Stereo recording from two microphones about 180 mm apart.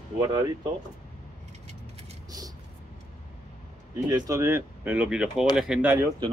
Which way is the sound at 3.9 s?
20° right (ahead or behind).